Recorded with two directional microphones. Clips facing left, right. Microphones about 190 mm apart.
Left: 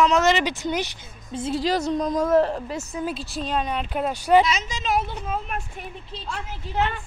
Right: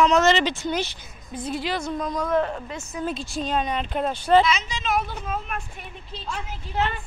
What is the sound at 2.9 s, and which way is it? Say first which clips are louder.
Speech: even; 25° left (ahead or behind).